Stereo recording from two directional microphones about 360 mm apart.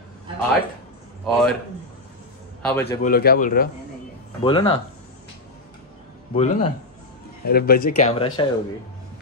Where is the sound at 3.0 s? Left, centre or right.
Left.